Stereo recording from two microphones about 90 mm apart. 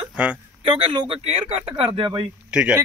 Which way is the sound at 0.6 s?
80° right.